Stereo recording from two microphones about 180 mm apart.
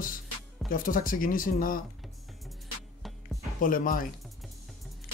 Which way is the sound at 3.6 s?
50° left (ahead or behind).